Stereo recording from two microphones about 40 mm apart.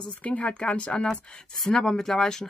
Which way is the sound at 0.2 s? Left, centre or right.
Left.